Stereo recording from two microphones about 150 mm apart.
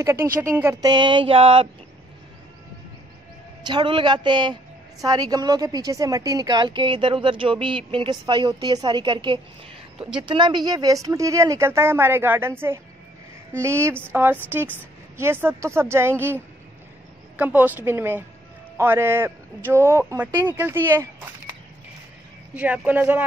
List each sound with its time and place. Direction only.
0.0 s a woman's voice: 20° right (ahead or behind); by 1.7 s 40° right (ahead or behind)
3.6 s a man's voice: 30° right (ahead or behind); by 16.3 s 15° right (ahead or behind)
17.4 s a man's voice: 10° right (ahead or behind)
22.5 s a man's voice: 10° right (ahead or behind)